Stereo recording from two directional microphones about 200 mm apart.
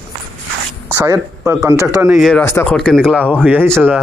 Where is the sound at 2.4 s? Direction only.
15° left (ahead or behind).